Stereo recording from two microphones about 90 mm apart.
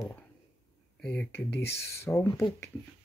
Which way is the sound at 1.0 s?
20° left (ahead or behind).